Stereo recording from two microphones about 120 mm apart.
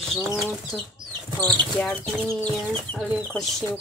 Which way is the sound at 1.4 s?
10° left (ahead or behind).